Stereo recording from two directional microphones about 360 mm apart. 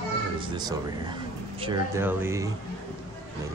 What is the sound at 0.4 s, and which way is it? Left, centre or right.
Speech, centre.